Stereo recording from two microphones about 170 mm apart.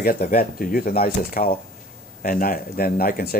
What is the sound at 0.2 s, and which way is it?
Speech, 50° left (ahead or behind).